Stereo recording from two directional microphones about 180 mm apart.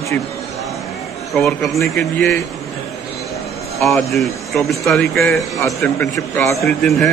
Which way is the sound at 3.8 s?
Centre (ahead or behind).